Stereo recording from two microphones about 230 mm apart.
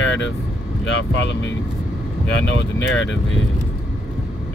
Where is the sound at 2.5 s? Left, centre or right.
Left.